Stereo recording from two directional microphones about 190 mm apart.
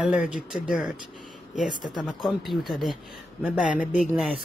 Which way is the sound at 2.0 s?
Centre (ahead or behind).